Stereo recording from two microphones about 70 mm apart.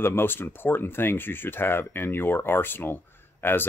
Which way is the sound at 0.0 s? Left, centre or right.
Left.